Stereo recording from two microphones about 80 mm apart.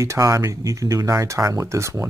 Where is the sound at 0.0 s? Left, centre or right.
Right.